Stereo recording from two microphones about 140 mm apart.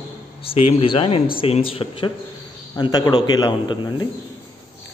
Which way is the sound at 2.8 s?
25° left (ahead or behind).